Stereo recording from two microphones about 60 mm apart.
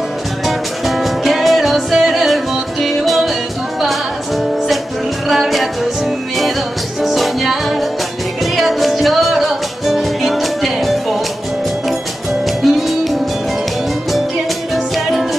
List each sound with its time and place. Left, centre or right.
0.5 s music: centre
5.3 s music: centre
7.0 s music: centre
12.6 s music: centre